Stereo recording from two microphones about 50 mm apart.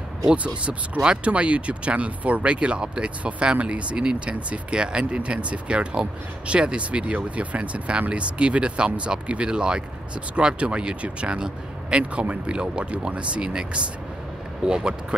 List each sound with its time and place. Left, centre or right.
0.3 s speech: right